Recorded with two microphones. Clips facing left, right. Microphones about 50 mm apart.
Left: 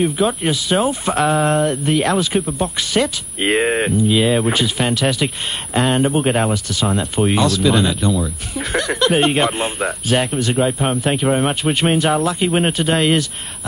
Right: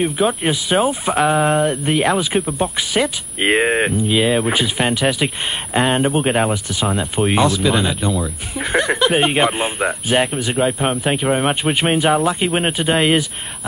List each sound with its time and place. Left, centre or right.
0.4 s speech: centre
6.1 s speech: centre
6.5 s speech: centre
9.0 s speech: centre
10.3 s speech: centre
11.4 s speech: centre
12.4 s speech: centre